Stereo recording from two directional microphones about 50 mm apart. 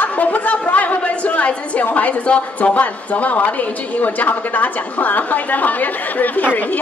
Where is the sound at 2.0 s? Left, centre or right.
Left.